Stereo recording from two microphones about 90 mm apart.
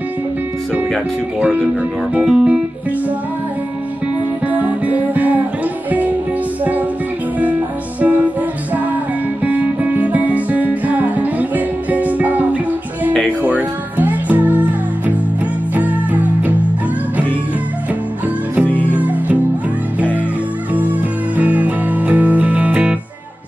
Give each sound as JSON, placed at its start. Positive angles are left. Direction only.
{"t": 1.4, "sound": "speech", "side_deg": -15}
{"t": 4.5, "sound": "music", "side_deg": -15}
{"t": 8.0, "sound": "music", "side_deg": -15}
{"t": 9.4, "sound": "music", "side_deg": -15}
{"t": 18.9, "sound": "music", "side_deg": -15}
{"t": 21.4, "sound": "music", "side_deg": -15}